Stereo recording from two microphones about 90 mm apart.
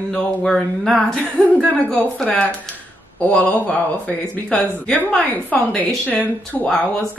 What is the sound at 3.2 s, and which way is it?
Speech, 15° left (ahead or behind).